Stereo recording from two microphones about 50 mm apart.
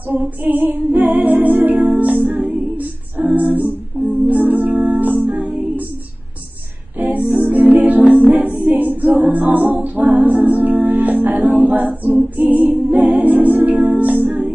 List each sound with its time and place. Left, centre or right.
0.0 s music: right
7.0 s music: right